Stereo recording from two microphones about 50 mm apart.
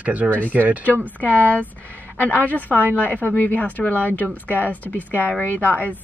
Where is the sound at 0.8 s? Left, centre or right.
Left.